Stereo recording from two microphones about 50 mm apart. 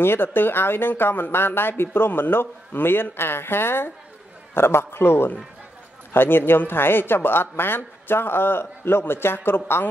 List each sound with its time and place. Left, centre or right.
0.0 s a man's voice: left